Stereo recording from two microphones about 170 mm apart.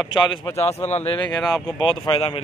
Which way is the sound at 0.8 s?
35° left (ahead or behind).